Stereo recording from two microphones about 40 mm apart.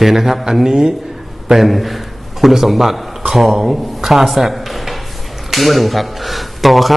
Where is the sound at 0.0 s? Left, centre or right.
Centre.